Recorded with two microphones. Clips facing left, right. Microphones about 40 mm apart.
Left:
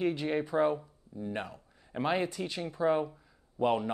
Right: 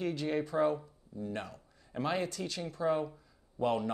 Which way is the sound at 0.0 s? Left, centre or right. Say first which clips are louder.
Left 3 dB; left.